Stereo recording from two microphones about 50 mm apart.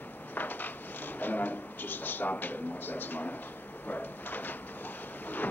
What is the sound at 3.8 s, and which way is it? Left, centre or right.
Speech, left.